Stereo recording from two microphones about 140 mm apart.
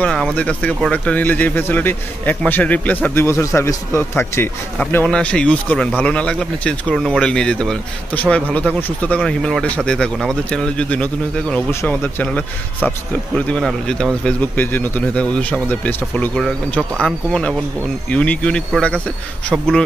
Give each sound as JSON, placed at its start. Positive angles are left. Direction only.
{"t": 0.0, "sound": "speech", "side_deg": 5}
{"t": 4.9, "sound": "speech", "side_deg": 5}